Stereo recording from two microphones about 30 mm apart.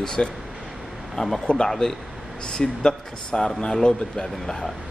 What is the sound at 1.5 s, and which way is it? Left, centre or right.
Speech, left.